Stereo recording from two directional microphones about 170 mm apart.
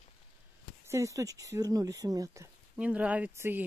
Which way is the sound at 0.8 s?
20° right (ahead or behind).